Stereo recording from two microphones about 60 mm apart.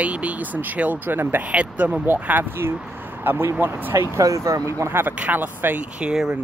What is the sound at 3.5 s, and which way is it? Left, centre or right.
Speech, right.